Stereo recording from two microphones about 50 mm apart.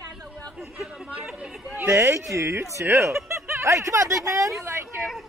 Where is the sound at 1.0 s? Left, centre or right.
Centre.